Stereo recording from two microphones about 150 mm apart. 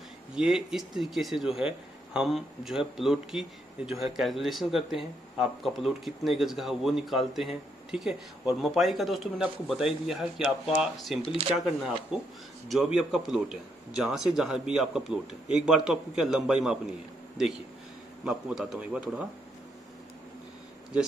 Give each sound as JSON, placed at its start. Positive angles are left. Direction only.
{"t": 0.4, "sound": "speech", "side_deg": -5}